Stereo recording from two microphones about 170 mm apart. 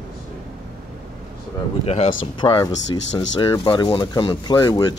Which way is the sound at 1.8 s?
35° left (ahead or behind).